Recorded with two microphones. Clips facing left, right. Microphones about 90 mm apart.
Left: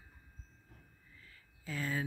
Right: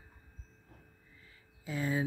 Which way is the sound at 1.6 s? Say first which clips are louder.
Right 4 dB; 20° right (ahead or behind).